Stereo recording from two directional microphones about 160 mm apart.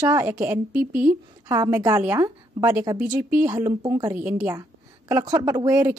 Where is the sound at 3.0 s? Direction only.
55° right (ahead or behind).